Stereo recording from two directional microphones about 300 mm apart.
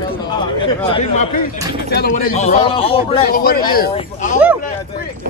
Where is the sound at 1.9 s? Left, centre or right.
Left.